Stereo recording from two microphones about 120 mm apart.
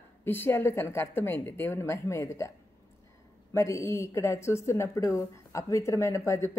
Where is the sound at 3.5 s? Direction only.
25° left (ahead or behind).